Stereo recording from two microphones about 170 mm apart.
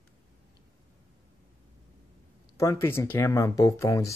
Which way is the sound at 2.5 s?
20° left (ahead or behind).